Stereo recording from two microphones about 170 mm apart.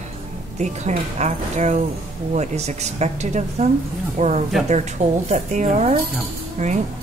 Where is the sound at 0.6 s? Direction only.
45° right (ahead or behind).